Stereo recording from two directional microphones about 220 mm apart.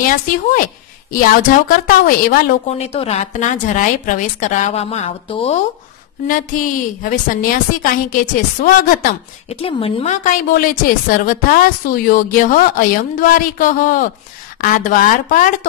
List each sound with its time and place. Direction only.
0.0 s a woman's voice: 35° left (ahead or behind)
1.9 s a woman's voice: 40° left (ahead or behind)
2.7 s a woman's voice: 25° left (ahead or behind)
6.2 s a woman's voice: 40° left (ahead or behind)